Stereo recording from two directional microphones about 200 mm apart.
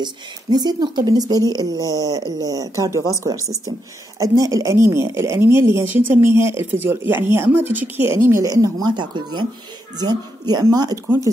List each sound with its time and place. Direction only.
0.0 s speech: 20° right (ahead or behind)